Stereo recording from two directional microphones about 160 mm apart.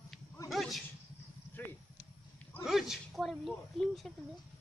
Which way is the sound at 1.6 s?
10° left (ahead or behind).